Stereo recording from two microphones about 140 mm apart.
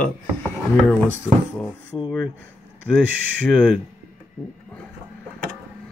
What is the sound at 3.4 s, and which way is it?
Speech, 5° left (ahead or behind).